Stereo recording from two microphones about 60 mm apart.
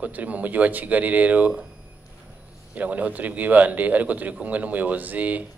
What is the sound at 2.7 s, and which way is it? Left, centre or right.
A man's voice, right.